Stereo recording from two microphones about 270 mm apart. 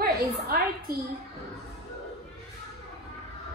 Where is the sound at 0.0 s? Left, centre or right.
Right.